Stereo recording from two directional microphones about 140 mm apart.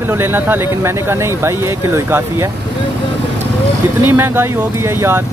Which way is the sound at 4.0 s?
15° right (ahead or behind).